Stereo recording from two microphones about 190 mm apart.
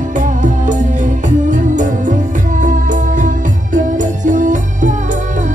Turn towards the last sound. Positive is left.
turn(degrees=-40)  # may be behind; listen again after turning